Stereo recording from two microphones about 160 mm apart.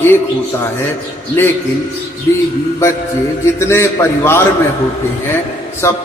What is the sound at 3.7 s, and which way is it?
Speech, 15° left (ahead or behind).